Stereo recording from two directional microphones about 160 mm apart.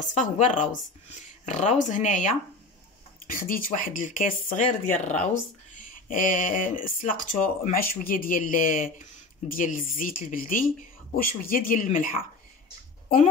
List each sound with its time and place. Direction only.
0.2 s speech: 50° left (ahead or behind)
3.3 s speech: 60° left (ahead or behind)